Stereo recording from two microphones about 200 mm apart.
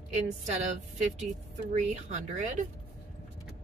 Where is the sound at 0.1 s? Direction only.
35° right (ahead or behind).